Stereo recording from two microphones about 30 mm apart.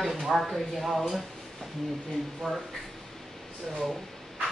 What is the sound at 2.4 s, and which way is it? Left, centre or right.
Speech, centre.